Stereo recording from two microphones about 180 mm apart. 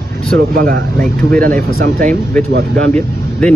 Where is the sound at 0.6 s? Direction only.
55° right (ahead or behind).